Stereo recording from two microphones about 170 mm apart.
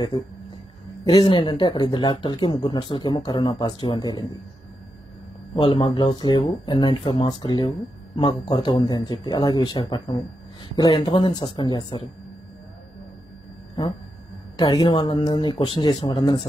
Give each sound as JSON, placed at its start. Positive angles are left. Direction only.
{"t": 1.0, "sound": "speech", "side_deg": 30}
{"t": 5.6, "sound": "speech", "side_deg": 30}
{"t": 14.6, "sound": "speech", "side_deg": 30}